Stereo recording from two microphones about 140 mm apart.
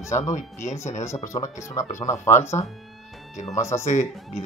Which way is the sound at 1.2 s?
20° left (ahead or behind).